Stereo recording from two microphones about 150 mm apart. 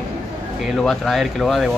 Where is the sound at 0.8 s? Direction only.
Centre (ahead or behind).